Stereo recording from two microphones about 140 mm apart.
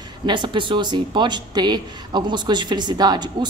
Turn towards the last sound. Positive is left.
turn(degrees=-30)  # may be behind; listen again after turning